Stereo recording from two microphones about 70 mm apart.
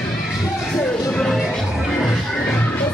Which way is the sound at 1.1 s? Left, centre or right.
Centre.